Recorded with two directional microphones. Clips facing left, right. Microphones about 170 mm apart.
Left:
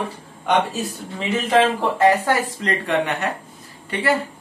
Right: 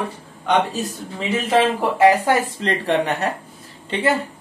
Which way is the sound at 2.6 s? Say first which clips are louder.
Right 1 dB; 35° right (ahead or behind).